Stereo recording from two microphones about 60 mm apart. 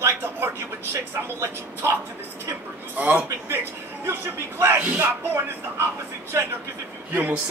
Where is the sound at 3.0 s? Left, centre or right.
Right.